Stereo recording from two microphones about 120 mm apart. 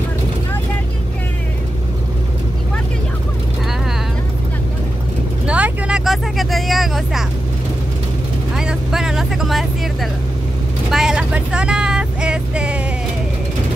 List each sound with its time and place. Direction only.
5.5 s vehicle: 10° right (ahead or behind)
8.5 s vehicle: 5° right (ahead or behind)
10.9 s vehicle: 5° right (ahead or behind)